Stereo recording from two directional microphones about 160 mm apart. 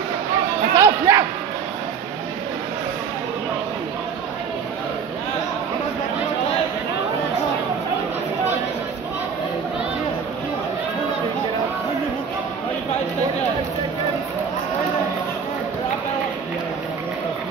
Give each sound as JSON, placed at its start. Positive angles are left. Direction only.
{"t": 0.7, "sound": "music", "side_deg": -20}